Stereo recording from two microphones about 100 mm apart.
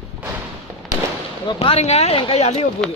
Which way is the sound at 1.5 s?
85° left.